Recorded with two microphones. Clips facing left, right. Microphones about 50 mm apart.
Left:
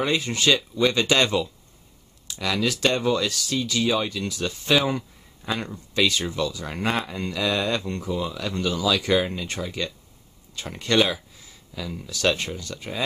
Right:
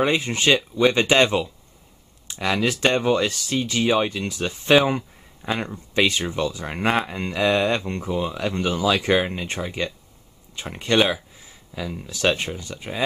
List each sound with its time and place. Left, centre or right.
0.0 s speech: right